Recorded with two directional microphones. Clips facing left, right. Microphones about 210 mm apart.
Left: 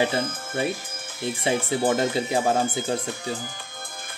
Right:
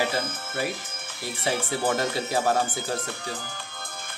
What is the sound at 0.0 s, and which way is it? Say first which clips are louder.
Speech: left 3 dB; 25° left (ahead or behind).